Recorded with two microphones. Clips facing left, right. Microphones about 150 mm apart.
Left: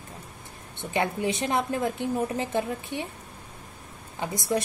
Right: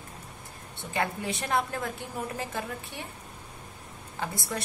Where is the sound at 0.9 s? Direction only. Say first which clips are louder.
Left 4 dB; 20° left (ahead or behind).